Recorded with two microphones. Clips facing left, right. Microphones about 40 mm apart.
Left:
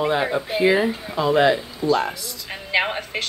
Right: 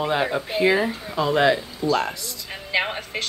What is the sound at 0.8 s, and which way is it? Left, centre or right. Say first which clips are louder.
Speech: left 2 dB; centre.